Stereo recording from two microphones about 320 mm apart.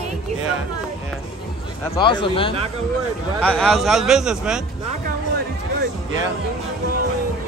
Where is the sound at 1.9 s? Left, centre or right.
Centre.